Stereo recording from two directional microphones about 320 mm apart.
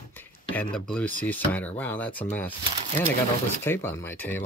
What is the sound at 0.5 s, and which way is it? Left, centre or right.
Speech, centre.